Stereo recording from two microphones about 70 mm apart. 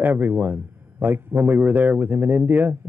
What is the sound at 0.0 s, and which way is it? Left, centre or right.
A man's voice, right.